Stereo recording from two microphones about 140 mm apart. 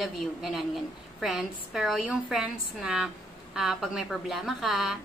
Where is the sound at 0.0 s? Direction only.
Centre (ahead or behind).